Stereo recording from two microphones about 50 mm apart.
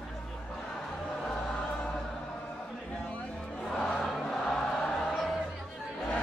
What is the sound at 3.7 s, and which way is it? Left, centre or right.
Crowd, centre.